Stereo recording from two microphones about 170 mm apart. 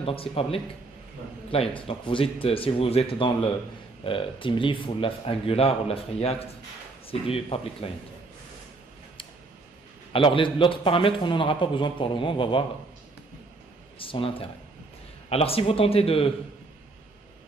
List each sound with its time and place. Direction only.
0.0 s speech: 35° left (ahead or behind)
10.1 s a man's voice: 30° left (ahead or behind)
13.9 s speech: 30° left (ahead or behind)